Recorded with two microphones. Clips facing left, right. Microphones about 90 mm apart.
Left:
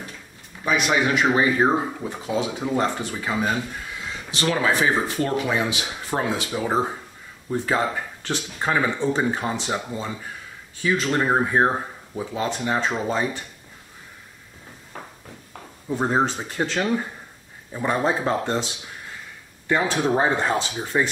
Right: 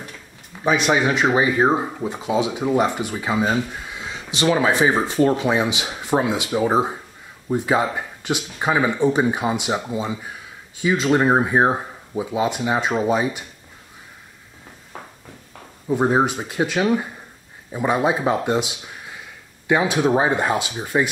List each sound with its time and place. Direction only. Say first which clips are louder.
0.7 s speech: right 3 dB; 25° right (ahead or behind)
15.9 s speech: right 4 dB; 15° right (ahead or behind)
19.7 s speech: right 3 dB; 10° right (ahead or behind)